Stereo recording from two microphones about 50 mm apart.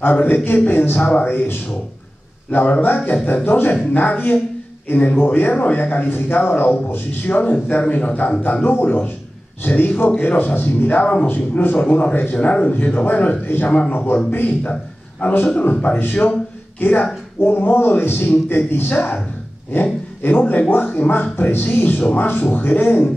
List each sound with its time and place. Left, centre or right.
0.0 s speech: left
0.9 s speech: left
14.6 s a man's voice: left
15.4 s speech: left
17.4 s a man's voice: left